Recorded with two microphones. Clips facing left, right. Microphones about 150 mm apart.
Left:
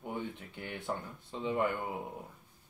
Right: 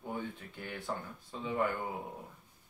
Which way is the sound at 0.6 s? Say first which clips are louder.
Left 1 dB; 20° left (ahead or behind).